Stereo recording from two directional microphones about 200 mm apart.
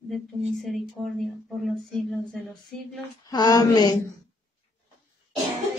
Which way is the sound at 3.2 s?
20° left (ahead or behind).